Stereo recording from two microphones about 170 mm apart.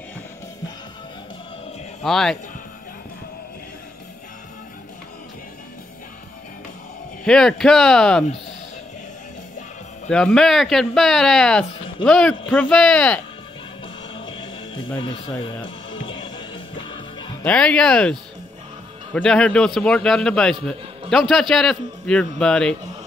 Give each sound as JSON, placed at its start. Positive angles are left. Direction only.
{"t": 2.0, "sound": "speech", "side_deg": 0}
{"t": 7.2, "sound": "speech", "side_deg": 5}
{"t": 10.0, "sound": "speech", "side_deg": 5}
{"t": 14.1, "sound": "music", "side_deg": 30}
{"t": 17.5, "sound": "speech", "side_deg": 5}
{"t": 19.1, "sound": "speech", "side_deg": 5}